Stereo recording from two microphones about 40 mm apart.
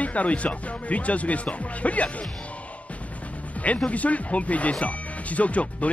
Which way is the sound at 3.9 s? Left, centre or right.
Left.